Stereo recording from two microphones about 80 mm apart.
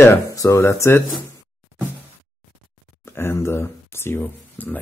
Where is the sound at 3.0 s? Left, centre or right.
Left.